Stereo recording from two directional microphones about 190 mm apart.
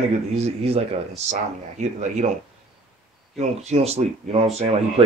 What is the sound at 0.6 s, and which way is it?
Speech, 30° right (ahead or behind).